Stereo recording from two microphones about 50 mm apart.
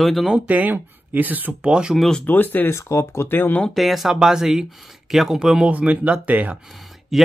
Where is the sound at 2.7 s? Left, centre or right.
Left.